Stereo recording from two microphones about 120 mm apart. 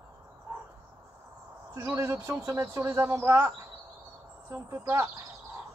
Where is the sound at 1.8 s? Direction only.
20° right (ahead or behind).